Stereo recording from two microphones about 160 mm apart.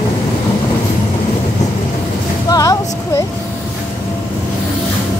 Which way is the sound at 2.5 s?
20° left (ahead or behind).